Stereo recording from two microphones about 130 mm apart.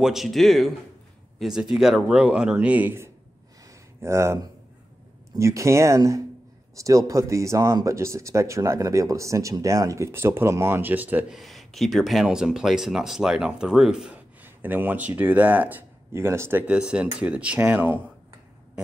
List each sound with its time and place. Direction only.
0.0 s speech: centre (ahead or behind)
11.3 s speech: centre (ahead or behind)